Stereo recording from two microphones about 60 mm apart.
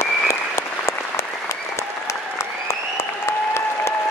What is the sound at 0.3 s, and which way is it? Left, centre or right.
Applause, left.